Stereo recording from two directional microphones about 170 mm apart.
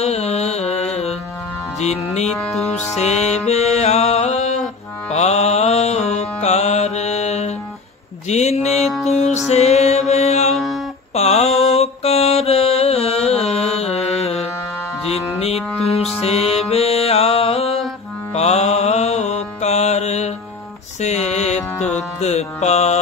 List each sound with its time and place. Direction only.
0.0 s music: 40° left (ahead or behind)
2.3 s music: 5° left (ahead or behind)
2.9 s music: 40° left (ahead or behind)
5.1 s mantra: 40° left (ahead or behind)
9.0 s music: 40° left (ahead or behind)
10.5 s music: centre (ahead or behind)
11.1 s mantra: 40° left (ahead or behind)
15.3 s music: 35° left (ahead or behind)
18.3 s mantra: 40° left (ahead or behind)
21.0 s music: 40° left (ahead or behind)